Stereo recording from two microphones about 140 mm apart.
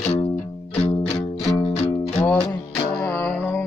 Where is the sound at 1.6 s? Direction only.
45° left (ahead or behind).